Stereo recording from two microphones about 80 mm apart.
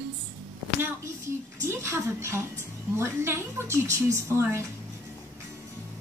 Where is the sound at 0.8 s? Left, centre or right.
Right.